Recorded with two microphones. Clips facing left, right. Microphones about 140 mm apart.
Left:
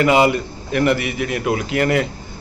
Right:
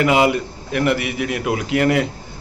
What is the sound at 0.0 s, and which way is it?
A man's voice, 10° right (ahead or behind).